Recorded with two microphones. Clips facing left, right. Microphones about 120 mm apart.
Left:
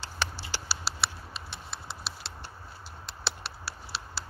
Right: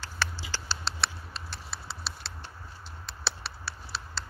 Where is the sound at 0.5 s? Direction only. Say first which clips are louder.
Even; 10° left (ahead or behind).